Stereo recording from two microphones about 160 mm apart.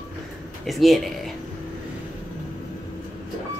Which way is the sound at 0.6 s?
Centre (ahead or behind).